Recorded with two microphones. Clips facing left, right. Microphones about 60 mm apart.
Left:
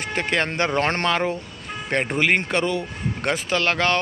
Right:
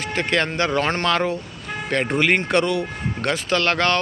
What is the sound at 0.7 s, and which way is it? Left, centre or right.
Speech, left.